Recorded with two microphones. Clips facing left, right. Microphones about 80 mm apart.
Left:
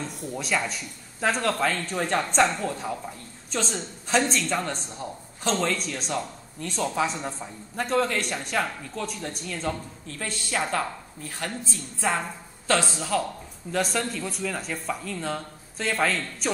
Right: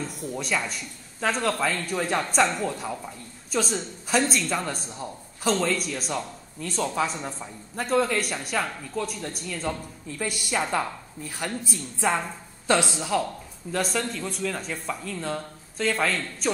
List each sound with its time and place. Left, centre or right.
0.0 s a woman's voice: centre
10.2 s a woman's voice: centre
13.7 s a woman's voice: centre